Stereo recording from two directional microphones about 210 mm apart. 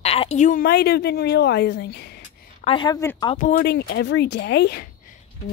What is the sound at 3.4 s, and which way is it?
A woman's voice, 50° left (ahead or behind).